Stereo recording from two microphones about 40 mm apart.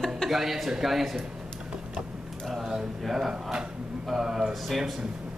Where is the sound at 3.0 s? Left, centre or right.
Centre.